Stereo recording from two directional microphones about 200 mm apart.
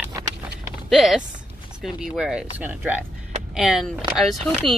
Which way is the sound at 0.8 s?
Centre (ahead or behind).